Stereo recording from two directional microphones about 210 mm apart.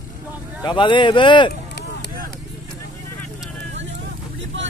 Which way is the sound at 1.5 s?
50° left (ahead or behind).